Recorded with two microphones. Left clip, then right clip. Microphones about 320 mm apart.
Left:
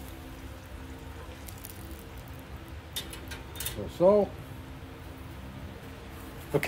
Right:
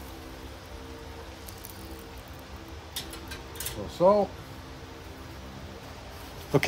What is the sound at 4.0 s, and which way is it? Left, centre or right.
Speech, centre.